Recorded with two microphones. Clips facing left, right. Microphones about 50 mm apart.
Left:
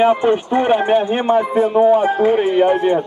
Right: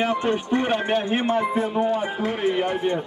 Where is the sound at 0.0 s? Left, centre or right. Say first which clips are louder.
Left 9 dB; centre.